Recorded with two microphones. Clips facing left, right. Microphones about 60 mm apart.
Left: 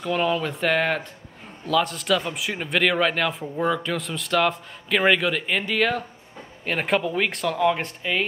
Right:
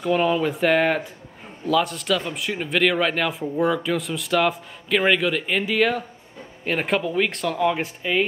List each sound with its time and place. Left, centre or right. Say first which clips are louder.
0.0 s a man's voice: right 3 dB; centre